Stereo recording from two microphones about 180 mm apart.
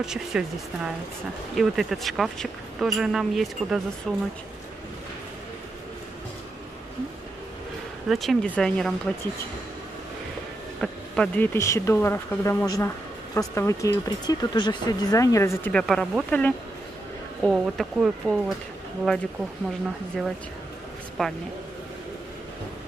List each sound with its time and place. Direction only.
0.0 s speech: 5° right (ahead or behind)
8.1 s speech: centre (ahead or behind)
10.8 s speech: 5° left (ahead or behind)
15.7 s speech: 5° left (ahead or behind)
21.2 s speech: centre (ahead or behind)